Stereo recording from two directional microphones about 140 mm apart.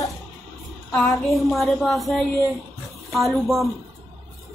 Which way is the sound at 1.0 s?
Centre (ahead or behind).